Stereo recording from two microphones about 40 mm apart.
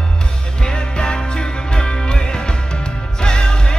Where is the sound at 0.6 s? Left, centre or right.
Left.